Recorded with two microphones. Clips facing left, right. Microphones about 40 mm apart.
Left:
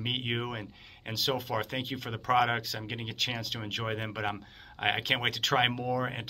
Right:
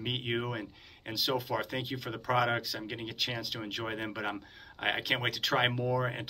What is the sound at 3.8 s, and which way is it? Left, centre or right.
Speech, centre.